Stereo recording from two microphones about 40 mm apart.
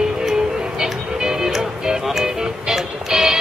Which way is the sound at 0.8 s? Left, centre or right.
Centre.